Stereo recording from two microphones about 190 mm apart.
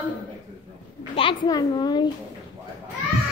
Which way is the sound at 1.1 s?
25° left (ahead or behind).